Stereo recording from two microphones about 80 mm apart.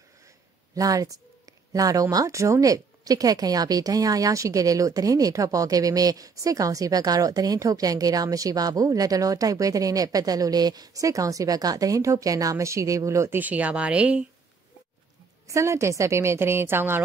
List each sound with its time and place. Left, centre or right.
0.7 s a woman's voice: right
13.4 s speech: centre
15.4 s a woman's voice: right